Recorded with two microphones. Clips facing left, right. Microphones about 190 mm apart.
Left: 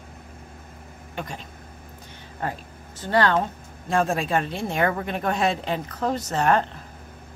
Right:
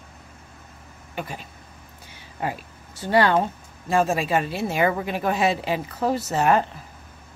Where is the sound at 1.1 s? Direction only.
5° right (ahead or behind).